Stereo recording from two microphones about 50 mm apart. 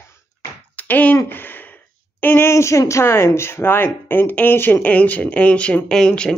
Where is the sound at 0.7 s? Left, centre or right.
Left.